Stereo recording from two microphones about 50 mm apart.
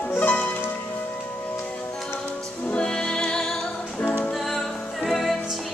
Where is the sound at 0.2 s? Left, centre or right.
Left.